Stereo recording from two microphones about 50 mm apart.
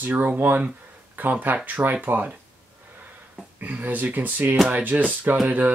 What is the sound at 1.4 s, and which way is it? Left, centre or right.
Speech, right.